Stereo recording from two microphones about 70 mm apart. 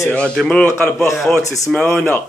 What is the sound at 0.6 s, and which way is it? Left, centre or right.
Speech, left.